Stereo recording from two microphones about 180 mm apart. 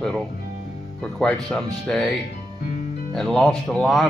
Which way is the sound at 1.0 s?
5° left (ahead or behind).